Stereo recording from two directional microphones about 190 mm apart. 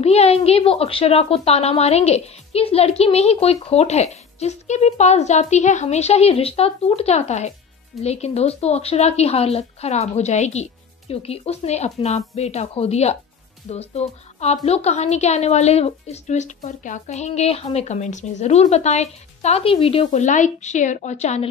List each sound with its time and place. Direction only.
0.0 s a woman's voice: 35° left (ahead or behind)